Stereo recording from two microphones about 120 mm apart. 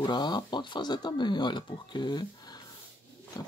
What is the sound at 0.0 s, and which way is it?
Speech, 40° left (ahead or behind).